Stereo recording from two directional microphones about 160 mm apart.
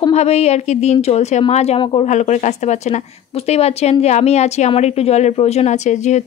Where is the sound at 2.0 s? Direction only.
45° left (ahead or behind).